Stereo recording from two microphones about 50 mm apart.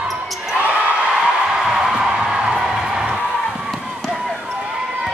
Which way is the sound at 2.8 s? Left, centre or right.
Centre.